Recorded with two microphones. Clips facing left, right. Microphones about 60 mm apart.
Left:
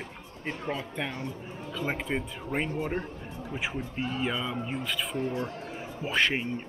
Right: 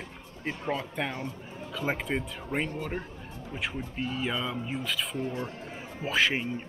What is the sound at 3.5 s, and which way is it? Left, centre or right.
Speech, centre.